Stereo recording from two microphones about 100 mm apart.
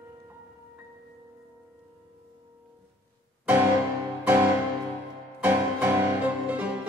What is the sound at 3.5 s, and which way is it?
Music, 25° right (ahead or behind).